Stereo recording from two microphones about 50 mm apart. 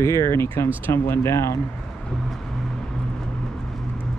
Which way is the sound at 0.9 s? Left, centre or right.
Left.